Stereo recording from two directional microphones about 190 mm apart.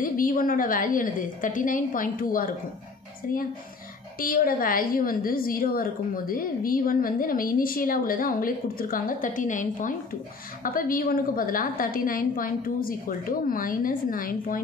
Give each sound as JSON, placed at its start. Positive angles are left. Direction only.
{"t": 0.0, "sound": "a woman's voice", "side_deg": 45}
{"t": 4.2, "sound": "a woman's voice", "side_deg": 50}